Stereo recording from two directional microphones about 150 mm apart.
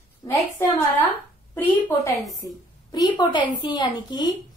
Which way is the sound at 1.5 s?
10° left (ahead or behind).